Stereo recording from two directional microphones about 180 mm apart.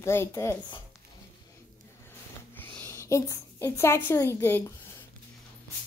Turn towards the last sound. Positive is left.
turn(degrees=15)  # may be behind; listen again after turning